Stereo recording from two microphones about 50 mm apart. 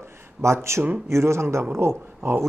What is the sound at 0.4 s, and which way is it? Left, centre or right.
Speech, right.